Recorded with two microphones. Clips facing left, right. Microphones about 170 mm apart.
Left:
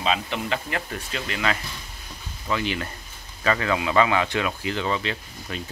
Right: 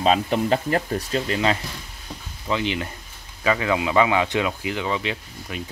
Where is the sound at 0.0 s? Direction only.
40° right (ahead or behind).